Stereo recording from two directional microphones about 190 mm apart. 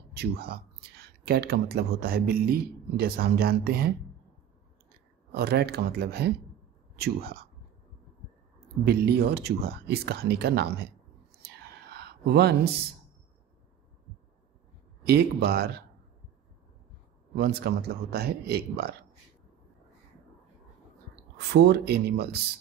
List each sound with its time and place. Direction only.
0.1 s speech: 55° right (ahead or behind)
5.3 s speech: 55° right (ahead or behind)
8.8 s speech: 55° right (ahead or behind)
11.4 s whispering: 60° right (ahead or behind)
15.0 s speech: 55° right (ahead or behind)
17.4 s speech: 55° right (ahead or behind)
21.4 s speech: 60° right (ahead or behind)